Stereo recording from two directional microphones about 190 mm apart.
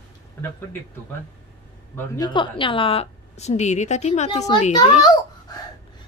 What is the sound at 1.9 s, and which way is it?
Speech, 10° left (ahead or behind).